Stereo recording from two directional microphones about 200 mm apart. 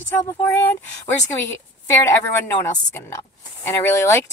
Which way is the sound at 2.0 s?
15° left (ahead or behind).